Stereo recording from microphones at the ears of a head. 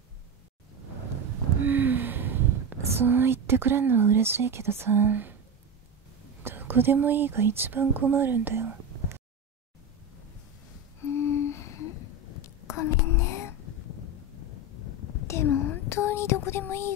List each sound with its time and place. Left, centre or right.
0.7 s gasp: right
6.5 s speech: right
11.0 s a sound: left